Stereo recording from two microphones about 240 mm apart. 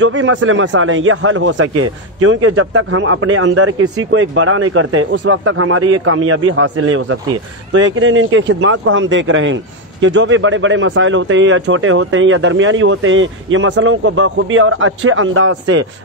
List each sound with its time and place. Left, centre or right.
0.0 s a man's voice: right